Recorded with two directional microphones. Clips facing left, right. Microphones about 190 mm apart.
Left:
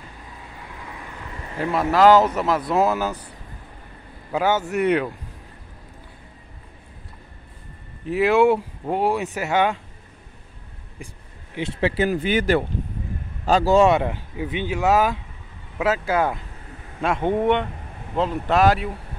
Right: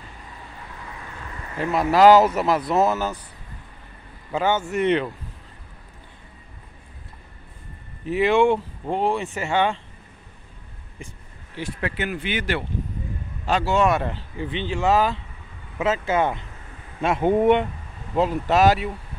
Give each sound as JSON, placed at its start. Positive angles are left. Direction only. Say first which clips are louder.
{"t": 1.6, "sound": "speech", "louder": "right 1 dB", "side_deg": -5}
{"t": 2.8, "sound": "speech", "louder": "even", "side_deg": 10}
{"t": 4.3, "sound": "speech", "louder": "left 1 dB", "side_deg": 5}
{"t": 8.1, "sound": "speech", "louder": "left 1 dB", "side_deg": 5}
{"t": 11.5, "sound": "speech", "louder": "left 6 dB", "side_deg": 25}
{"t": 13.9, "sound": "speech", "louder": "left 3 dB", "side_deg": 10}